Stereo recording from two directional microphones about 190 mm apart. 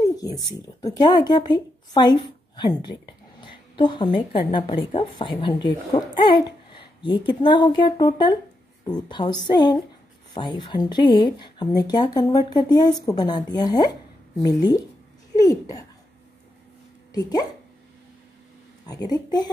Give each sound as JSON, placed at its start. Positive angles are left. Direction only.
{"t": 0.1, "sound": "a woman's voice", "side_deg": 20}
{"t": 17.1, "sound": "speech", "side_deg": 20}
{"t": 18.9, "sound": "speech", "side_deg": 20}